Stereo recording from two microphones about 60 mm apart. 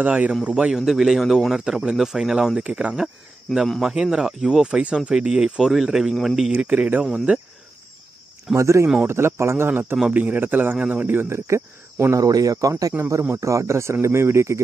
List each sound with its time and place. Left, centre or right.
0.0 s speech: right
0.7 s a man's voice: centre
2.6 s speech: centre
3.5 s speech: centre
3.8 s a man's voice: centre
6.6 s speech: right
8.5 s speech: right
9.0 s cricket: right
9.7 s a man's voice: right
10.1 s a man's voice: right
11.1 s cricket: right
12.3 s speech: right
13.4 s speech: right
14.0 s cricket: right